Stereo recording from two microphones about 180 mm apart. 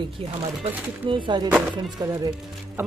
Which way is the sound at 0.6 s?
30° right (ahead or behind).